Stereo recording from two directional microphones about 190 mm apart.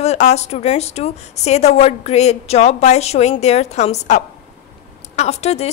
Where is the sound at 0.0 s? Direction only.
35° left (ahead or behind).